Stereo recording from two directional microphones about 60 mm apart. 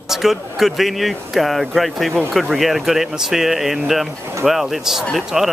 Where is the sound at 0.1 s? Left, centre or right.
Centre.